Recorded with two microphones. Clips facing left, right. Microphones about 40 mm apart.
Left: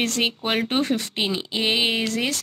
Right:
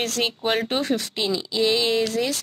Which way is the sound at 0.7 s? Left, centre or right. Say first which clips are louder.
Left 1 dB; left.